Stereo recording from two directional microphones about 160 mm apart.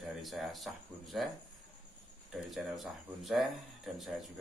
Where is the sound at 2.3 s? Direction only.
Centre (ahead or behind).